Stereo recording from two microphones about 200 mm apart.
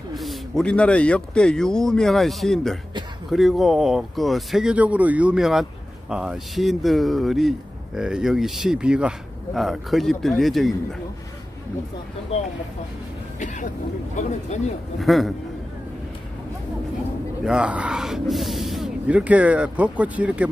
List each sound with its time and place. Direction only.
0.1 s speech: centre (ahead or behind)
12.3 s speech: 30° left (ahead or behind)
15.0 s speech: centre (ahead or behind)
17.5 s speech: 5° right (ahead or behind)